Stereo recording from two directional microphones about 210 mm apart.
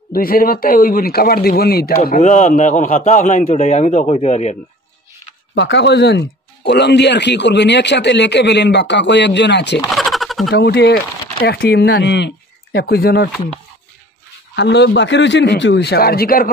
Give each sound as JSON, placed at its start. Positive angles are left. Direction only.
{"t": 0.1, "sound": "speech", "side_deg": 45}
{"t": 5.5, "sound": "speech", "side_deg": 55}
{"t": 9.8, "sound": "a sound", "side_deg": 0}
{"t": 10.5, "sound": "a man's voice", "side_deg": 50}
{"t": 14.5, "sound": "a man's voice", "side_deg": 55}